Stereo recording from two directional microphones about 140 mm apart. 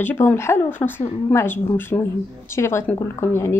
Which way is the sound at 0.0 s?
15° left (ahead or behind).